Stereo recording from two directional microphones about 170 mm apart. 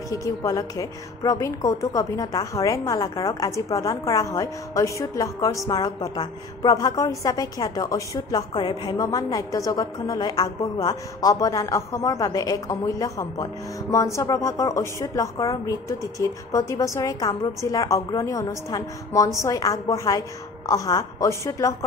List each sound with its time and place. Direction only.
0.1 s a woman's voice: 20° left (ahead or behind)